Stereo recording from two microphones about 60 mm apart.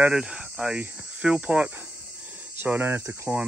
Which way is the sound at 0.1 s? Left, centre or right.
Centre.